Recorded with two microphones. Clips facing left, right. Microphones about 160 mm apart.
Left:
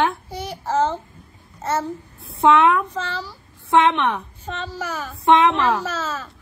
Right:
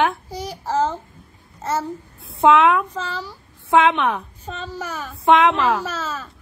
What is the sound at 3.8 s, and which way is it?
A woman's voice, centre (ahead or behind).